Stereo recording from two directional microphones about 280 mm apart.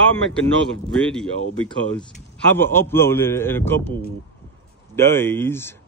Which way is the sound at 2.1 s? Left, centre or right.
Centre.